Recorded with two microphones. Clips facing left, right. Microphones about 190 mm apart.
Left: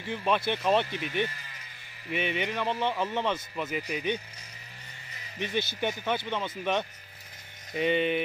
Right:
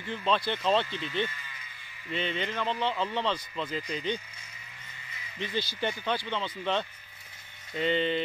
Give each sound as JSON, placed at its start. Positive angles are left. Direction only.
{"t": 0.0, "sound": "speech", "side_deg": 15}
{"t": 5.4, "sound": "speech", "side_deg": 20}